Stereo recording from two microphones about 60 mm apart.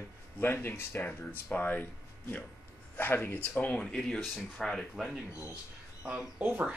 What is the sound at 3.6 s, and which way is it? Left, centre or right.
Speech, centre.